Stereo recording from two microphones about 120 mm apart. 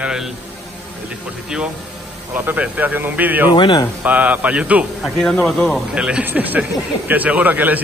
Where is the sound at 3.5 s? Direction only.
40° left (ahead or behind).